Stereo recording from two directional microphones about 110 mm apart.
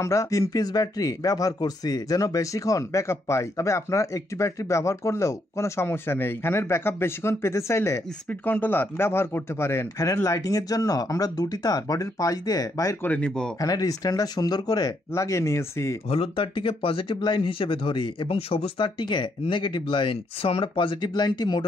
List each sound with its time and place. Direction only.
0.0 s speech: 30° left (ahead or behind)
13.0 s speech: 10° left (ahead or behind)
13.6 s speech: 35° left (ahead or behind)
16.1 s speech: 55° left (ahead or behind)